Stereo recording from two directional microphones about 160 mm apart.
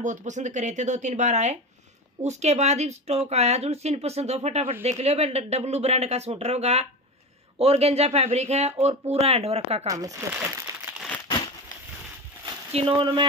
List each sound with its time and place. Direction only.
0.0 s speech: 50° right (ahead or behind)
9.8 s speech: 20° right (ahead or behind)
10.9 s crumpling: 10° right (ahead or behind)
12.7 s speech: 30° right (ahead or behind)